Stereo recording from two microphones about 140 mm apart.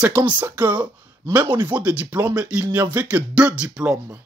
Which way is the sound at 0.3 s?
15° right (ahead or behind).